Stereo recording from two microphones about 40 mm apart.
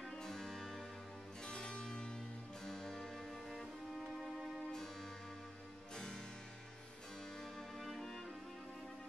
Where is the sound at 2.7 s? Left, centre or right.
Centre.